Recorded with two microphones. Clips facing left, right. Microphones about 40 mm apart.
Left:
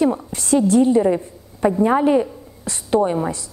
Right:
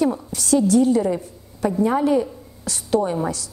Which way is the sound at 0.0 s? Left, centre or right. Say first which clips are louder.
Left 2 dB; left.